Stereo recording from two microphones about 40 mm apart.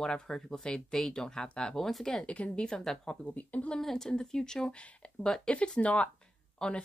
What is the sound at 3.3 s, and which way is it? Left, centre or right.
Speech, left.